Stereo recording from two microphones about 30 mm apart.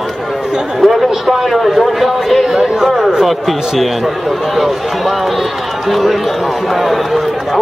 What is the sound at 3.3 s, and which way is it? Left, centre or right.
A man's voice, centre.